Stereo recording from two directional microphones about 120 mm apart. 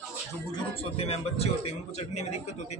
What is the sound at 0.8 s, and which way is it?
A man's voice, 55° left (ahead or behind).